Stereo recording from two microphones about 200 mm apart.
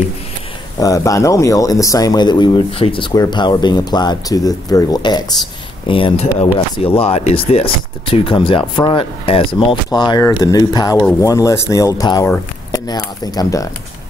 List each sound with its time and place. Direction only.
0.7 s speech: 15° left (ahead or behind)